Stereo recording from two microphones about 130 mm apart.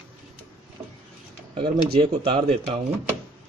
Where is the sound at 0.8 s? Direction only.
20° right (ahead or behind).